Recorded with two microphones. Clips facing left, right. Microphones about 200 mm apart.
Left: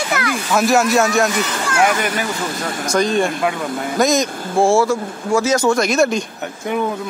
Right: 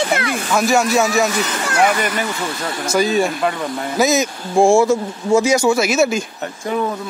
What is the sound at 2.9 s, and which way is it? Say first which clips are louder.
A man's voice: even; 5° right (ahead or behind).